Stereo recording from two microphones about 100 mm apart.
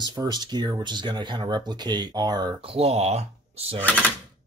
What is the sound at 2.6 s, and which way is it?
Speech, 80° right.